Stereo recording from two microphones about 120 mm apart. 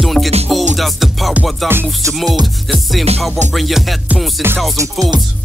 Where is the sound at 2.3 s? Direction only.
35° right (ahead or behind).